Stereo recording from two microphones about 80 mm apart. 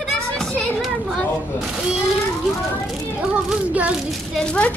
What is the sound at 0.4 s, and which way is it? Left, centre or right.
Children playing, centre.